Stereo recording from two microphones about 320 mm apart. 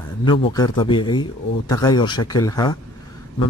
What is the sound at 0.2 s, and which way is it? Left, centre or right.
Speech, centre.